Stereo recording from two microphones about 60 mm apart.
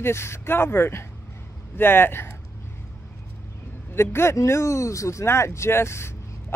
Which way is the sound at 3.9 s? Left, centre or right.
Left.